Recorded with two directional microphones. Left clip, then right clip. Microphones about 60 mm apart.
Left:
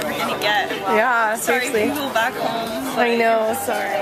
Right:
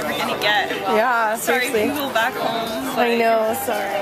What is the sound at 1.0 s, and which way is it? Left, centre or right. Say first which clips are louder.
A woman's voice: left 1 dB; centre.